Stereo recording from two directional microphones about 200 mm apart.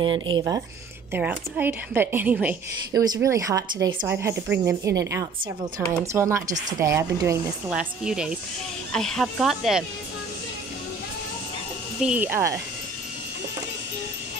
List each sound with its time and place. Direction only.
0.0 s speech: 25° right (ahead or behind)
1.1 s a woman's voice: 10° right (ahead or behind)
7.7 s speech: 5° right (ahead or behind)
12.0 s a woman's voice: 5° right (ahead or behind)